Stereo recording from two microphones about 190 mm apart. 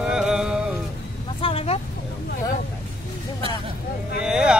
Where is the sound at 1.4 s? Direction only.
30° left (ahead or behind).